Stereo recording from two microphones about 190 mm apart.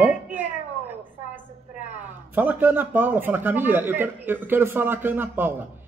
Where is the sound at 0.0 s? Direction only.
10° right (ahead or behind).